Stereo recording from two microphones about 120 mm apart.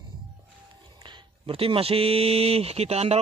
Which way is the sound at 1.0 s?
45° right (ahead or behind).